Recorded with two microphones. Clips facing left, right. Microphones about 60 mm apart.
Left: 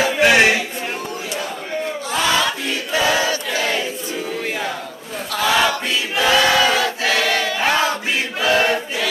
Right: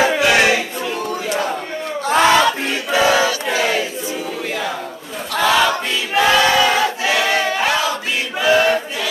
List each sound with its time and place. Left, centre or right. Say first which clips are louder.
0.2 s a sound: left 1 dB; left
2.0 s battle cry: right 7 dB; right
3.0 s a sound: right 4 dB; right
3.4 s choir: right 3 dB; right
5.3 s battle cry: right 2 dB; centre
6.1 s choir: right 3 dB; right
6.4 s battle cry: right 1 dB; centre
7.0 s choir: right 1 dB; centre
7.7 s a sound: left 1 dB; left
8.4 s choir: right 3 dB; centre